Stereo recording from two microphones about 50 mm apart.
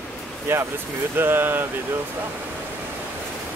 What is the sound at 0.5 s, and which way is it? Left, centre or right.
Speech, right.